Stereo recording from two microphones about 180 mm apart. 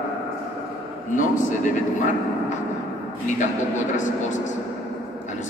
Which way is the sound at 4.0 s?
45° left (ahead or behind).